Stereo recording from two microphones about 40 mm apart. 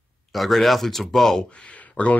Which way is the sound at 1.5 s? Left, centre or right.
Left.